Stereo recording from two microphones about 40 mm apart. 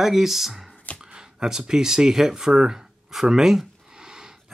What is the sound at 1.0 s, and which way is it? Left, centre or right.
Speech, centre.